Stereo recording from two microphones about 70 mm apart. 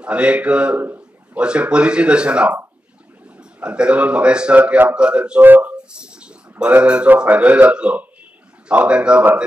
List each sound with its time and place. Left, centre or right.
0.0 s speech: centre
0.8 s a sound: right
1.4 s speech: centre
5.4 s speech: right
5.9 s a sound: centre
6.6 s speech: centre